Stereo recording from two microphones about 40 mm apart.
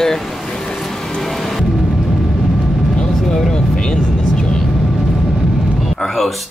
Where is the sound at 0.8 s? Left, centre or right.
Centre.